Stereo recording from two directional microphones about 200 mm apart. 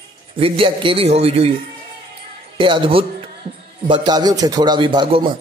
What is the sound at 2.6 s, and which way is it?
A man's voice, 25° right (ahead or behind).